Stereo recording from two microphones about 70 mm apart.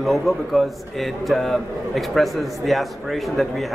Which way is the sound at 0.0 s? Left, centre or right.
Centre.